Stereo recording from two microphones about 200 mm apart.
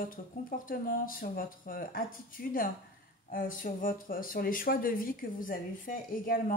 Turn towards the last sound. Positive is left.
turn(degrees=45)  # may be behind; listen again after turning